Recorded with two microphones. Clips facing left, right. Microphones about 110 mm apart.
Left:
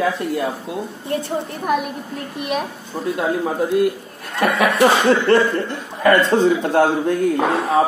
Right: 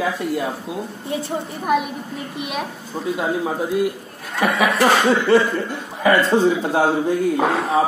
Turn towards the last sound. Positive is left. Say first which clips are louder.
# left 1 dB
turn(degrees=0)  # may be behind; listen again after turning